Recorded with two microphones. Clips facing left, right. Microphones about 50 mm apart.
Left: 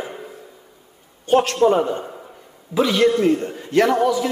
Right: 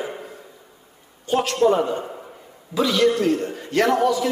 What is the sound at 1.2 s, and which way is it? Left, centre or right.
Speech, left.